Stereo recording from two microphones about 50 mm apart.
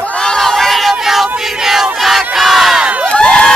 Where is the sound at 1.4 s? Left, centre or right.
Centre.